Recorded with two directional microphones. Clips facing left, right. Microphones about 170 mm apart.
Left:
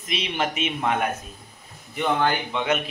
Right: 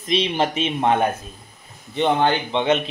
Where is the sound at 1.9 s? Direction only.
25° right (ahead or behind).